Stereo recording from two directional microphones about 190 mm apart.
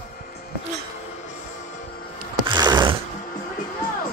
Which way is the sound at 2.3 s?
20° right (ahead or behind).